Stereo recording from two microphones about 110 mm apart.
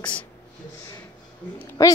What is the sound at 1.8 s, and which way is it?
Speech, 30° left (ahead or behind).